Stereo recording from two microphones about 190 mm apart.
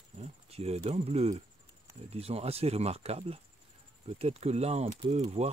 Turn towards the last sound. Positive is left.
turn(degrees=-35)  # may be behind; listen again after turning